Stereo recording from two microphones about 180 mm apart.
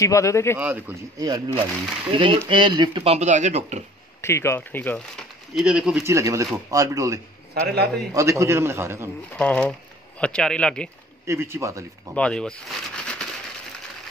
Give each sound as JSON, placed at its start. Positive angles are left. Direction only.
{"t": 0.0, "sound": "speech", "side_deg": 15}
{"t": 0.6, "sound": "speech", "side_deg": -10}
{"t": 1.2, "sound": "speech", "side_deg": -20}
{"t": 4.2, "sound": "speech", "side_deg": 15}
{"t": 6.1, "sound": "speech", "side_deg": -15}
{"t": 7.6, "sound": "a man's voice", "side_deg": -65}
{"t": 8.1, "sound": "speech", "side_deg": -15}
{"t": 9.3, "sound": "speech", "side_deg": 10}
{"t": 11.2, "sound": "speech", "side_deg": -15}
{"t": 12.2, "sound": "speech", "side_deg": 5}